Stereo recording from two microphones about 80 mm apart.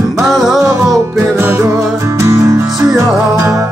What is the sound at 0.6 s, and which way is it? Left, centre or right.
Music, right.